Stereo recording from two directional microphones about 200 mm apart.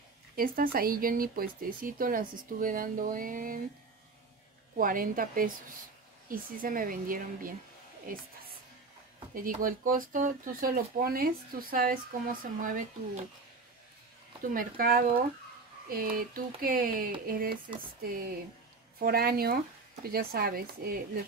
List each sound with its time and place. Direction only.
0.4 s speech: 45° right (ahead or behind)
4.7 s speech: 45° right (ahead or behind)
9.3 s speech: 45° right (ahead or behind)
14.5 s speech: 45° right (ahead or behind)
18.9 s speech: 50° right (ahead or behind)